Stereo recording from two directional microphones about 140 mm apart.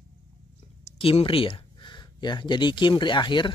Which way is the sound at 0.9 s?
40° left (ahead or behind).